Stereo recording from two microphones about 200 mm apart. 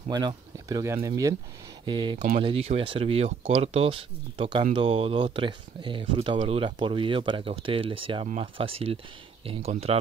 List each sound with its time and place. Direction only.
0.1 s speech: 20° right (ahead or behind)
2.1 s speech: 40° right (ahead or behind)